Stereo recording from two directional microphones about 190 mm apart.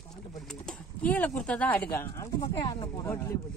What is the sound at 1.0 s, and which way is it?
Speech, 10° left (ahead or behind).